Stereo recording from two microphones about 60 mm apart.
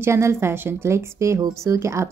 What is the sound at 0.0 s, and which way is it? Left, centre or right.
Speech, right.